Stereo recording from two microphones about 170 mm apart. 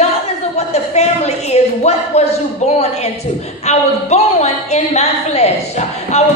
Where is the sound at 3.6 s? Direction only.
40° left (ahead or behind).